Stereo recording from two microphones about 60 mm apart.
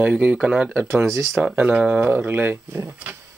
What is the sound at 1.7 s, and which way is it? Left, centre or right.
Speech, centre.